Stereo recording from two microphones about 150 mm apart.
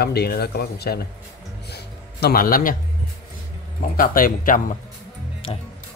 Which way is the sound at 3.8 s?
70° left (ahead or behind).